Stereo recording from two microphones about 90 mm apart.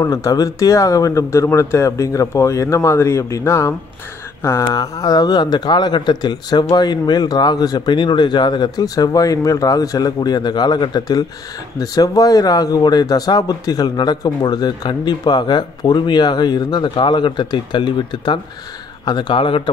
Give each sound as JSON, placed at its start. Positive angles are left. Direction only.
{"t": 0.0, "sound": "speech", "side_deg": 40}